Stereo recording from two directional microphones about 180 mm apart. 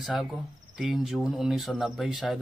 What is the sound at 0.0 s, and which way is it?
Speech, centre (ahead or behind).